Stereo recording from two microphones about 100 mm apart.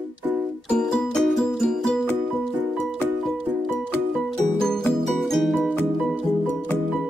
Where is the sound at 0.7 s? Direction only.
5° left (ahead or behind).